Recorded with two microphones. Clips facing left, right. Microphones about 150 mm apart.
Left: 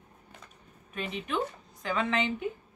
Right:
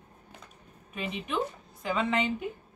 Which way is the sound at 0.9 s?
5° right (ahead or behind).